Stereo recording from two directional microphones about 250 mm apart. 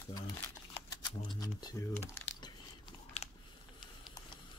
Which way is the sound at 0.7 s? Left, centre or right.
Centre.